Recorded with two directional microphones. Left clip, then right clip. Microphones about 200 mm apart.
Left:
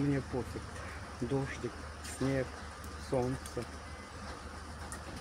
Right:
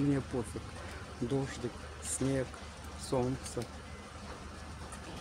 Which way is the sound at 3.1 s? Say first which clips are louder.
Even; 25° right (ahead or behind).